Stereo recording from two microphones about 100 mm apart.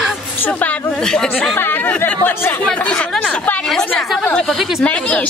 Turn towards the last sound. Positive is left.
turn(degrees=10)  # may be behind; listen again after turning